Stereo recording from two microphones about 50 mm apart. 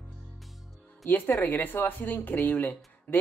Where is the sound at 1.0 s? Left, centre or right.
Left.